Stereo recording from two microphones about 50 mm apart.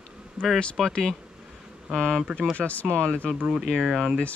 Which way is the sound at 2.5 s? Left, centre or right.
Left.